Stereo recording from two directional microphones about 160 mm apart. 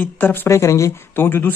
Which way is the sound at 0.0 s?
10° left (ahead or behind).